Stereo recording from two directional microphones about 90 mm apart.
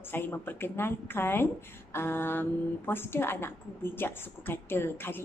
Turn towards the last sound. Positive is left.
turn(degrees=25)  # may be behind; listen again after turning